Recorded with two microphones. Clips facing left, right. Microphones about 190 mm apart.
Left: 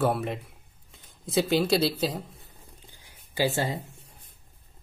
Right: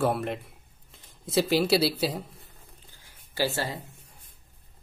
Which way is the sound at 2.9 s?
15° left (ahead or behind).